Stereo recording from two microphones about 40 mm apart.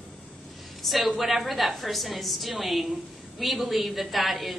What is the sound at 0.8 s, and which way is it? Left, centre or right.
A woman's voice, centre.